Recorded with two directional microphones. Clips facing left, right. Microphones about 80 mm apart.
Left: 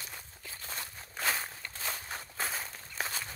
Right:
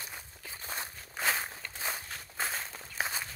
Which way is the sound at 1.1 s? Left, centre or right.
Centre.